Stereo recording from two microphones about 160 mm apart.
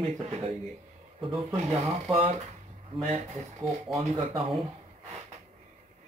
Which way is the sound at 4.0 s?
35° right (ahead or behind).